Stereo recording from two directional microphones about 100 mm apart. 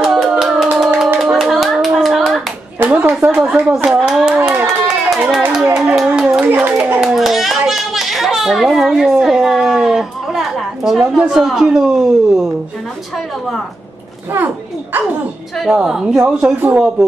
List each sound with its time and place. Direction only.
0.0 s clapping: 5° right (ahead or behind)
2.8 s a woman's voice: 20° right (ahead or behind)
3.3 s speech: 5° right (ahead or behind)
4.1 s a sound: 5° right (ahead or behind)
4.6 s run: 5° right (ahead or behind)
5.2 s a sound: 10° right (ahead or behind)
5.9 s clapping: 10° right (ahead or behind)
7.0 s children playing: centre (ahead or behind)
14.3 s children playing: 20° right (ahead or behind)
15.5 s a woman's voice: 5° right (ahead or behind)